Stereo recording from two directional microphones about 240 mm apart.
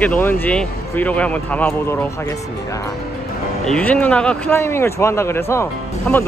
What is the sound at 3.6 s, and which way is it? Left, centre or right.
Speech, centre.